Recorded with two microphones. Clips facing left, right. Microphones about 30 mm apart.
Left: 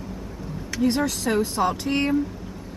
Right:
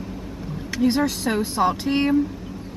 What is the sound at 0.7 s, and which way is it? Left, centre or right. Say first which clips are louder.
Speech: right 2 dB; centre.